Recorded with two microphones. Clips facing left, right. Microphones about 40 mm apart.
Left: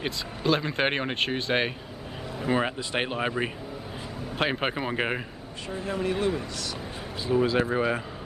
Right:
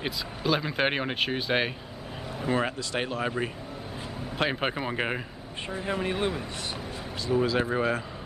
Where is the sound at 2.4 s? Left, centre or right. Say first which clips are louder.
Left 1 dB; centre.